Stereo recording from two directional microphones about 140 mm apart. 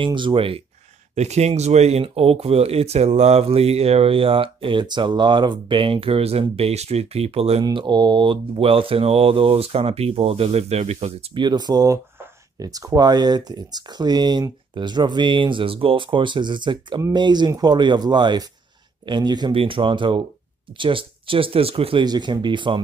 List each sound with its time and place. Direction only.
0.0 s speech: 35° right (ahead or behind)
1.1 s speech: 50° right (ahead or behind)
7.6 s speech: 30° right (ahead or behind)
22.0 s speech: 30° right (ahead or behind)